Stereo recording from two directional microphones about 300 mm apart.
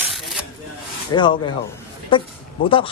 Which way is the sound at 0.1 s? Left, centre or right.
Centre.